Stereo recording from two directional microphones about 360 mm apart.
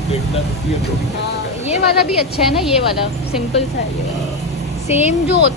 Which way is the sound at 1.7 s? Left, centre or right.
Centre.